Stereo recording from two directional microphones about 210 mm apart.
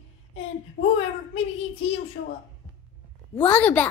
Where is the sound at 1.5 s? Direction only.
25° left (ahead or behind).